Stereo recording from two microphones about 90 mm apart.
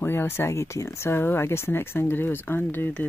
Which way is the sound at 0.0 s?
25° left (ahead or behind).